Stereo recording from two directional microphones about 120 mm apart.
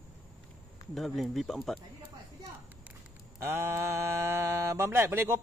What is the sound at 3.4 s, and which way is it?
Speech, 25° right (ahead or behind).